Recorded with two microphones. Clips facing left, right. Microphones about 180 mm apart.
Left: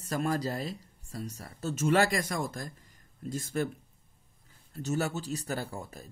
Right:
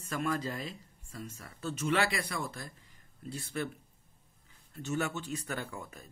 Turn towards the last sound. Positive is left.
turn(degrees=35)  # may be behind; listen again after turning